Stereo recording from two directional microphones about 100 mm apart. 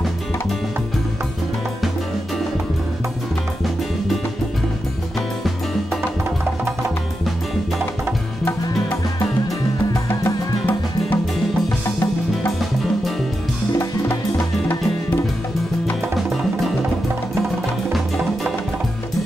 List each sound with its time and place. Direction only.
10.0 s music: 25° left (ahead or behind)
16.2 s music: centre (ahead or behind)